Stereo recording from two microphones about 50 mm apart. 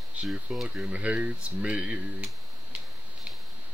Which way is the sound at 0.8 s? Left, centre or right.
Right.